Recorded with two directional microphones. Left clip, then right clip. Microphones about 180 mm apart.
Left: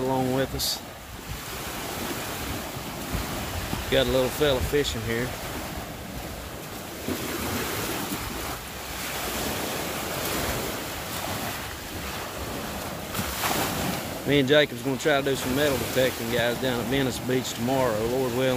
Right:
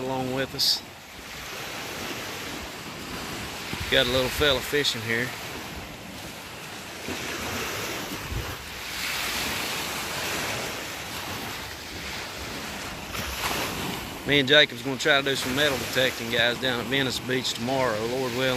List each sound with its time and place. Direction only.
0.0 s a sound: 5° left (ahead or behind)
3.9 s speech: centre (ahead or behind)
7.1 s waves: 65° left (ahead or behind)
9.1 s waves: 50° left (ahead or behind)
13.1 s boat: 55° left (ahead or behind)
14.2 s speech: centre (ahead or behind)